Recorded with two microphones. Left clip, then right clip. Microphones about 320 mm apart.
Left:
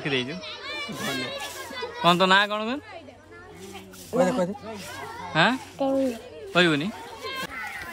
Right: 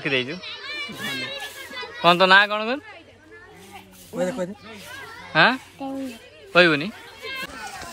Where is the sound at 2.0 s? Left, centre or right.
Centre.